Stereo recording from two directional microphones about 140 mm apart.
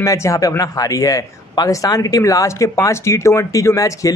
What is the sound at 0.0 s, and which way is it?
Speech, 25° left (ahead or behind).